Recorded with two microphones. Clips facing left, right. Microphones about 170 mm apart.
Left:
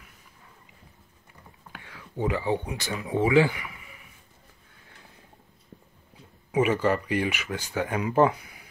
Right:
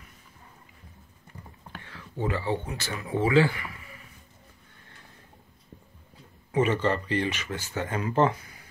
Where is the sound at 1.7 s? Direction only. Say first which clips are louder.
Left 2 dB; 15° left (ahead or behind).